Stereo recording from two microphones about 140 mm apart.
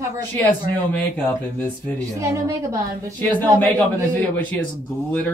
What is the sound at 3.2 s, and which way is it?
Speech, 15° left (ahead or behind).